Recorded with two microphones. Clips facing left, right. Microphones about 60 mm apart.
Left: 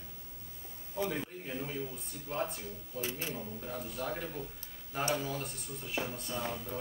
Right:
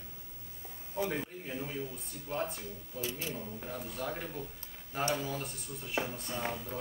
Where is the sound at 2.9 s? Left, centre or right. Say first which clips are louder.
Even; left.